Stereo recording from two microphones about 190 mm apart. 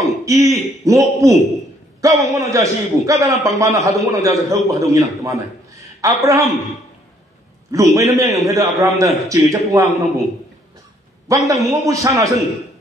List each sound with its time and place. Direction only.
0.0 s a man's voice: 15° right (ahead or behind)
7.7 s a man's voice: 15° right (ahead or behind)
11.2 s a man's voice: 15° right (ahead or behind)